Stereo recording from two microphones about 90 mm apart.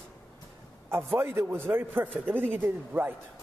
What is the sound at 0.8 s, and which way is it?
A man's voice, 25° right (ahead or behind).